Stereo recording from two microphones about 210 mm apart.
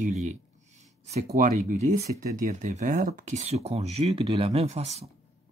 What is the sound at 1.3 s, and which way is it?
Speech, 35° right (ahead or behind).